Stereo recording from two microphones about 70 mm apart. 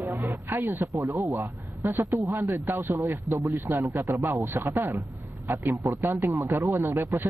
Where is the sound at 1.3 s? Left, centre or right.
Right.